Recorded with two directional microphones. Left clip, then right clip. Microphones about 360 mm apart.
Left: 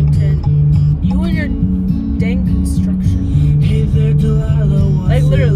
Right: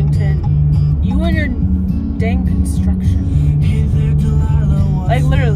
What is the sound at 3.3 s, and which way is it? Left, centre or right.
Music, right.